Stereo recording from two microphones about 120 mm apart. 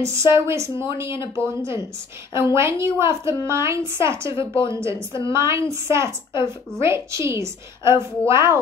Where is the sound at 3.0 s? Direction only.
25° right (ahead or behind).